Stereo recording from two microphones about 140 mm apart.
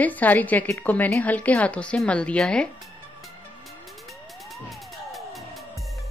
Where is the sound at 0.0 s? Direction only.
10° left (ahead or behind).